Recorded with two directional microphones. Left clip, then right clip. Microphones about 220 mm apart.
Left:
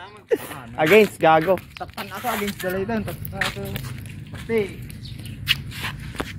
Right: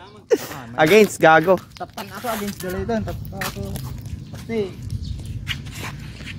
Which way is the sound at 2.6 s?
50° right (ahead or behind).